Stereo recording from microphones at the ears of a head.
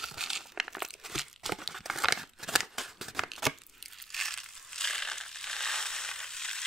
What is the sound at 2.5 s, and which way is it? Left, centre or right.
Scissors, centre.